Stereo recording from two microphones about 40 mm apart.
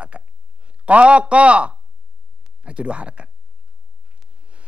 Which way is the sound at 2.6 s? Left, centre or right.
Right.